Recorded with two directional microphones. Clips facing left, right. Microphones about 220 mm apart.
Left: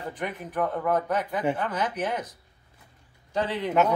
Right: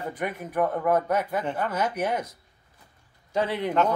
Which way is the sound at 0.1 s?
10° right (ahead or behind).